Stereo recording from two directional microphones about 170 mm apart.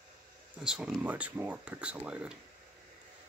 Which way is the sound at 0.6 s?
5° right (ahead or behind).